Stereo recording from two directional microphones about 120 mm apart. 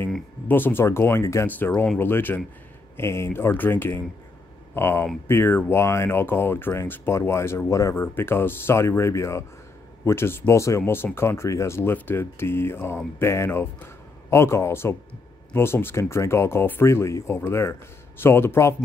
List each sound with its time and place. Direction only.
0.5 s speech: 15° left (ahead or behind)